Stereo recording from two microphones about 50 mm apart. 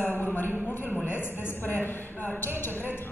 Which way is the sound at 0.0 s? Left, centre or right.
Left.